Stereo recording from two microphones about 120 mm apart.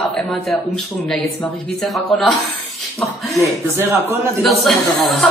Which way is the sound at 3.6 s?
20° right (ahead or behind).